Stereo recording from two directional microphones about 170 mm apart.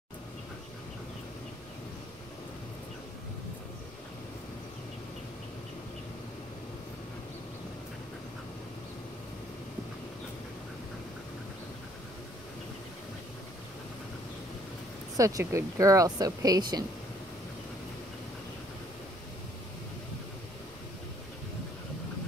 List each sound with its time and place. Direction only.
15.1 s speech: 20° right (ahead or behind)